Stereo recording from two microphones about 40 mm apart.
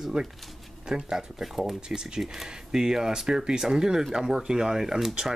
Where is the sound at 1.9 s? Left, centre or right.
Centre.